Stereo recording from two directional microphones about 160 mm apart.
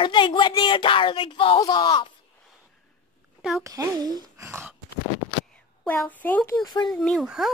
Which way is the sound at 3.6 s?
20° right (ahead or behind).